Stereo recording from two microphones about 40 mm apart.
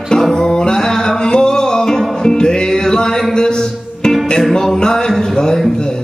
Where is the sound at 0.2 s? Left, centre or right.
Centre.